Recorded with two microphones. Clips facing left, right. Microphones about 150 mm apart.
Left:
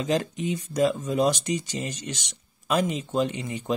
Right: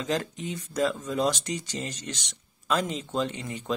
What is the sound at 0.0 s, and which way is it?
Speech, 15° left (ahead or behind).